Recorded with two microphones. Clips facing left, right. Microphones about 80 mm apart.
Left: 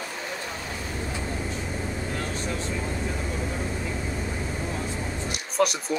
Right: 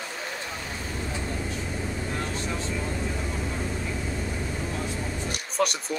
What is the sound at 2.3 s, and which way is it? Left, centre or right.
Vehicle, right.